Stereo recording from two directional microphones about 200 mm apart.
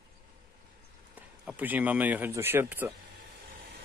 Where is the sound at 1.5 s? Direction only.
10° right (ahead or behind).